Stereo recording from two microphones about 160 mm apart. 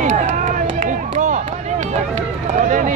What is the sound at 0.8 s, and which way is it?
Run, 50° right (ahead or behind).